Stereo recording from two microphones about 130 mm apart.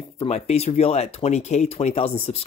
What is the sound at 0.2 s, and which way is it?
Speech, 55° left (ahead or behind).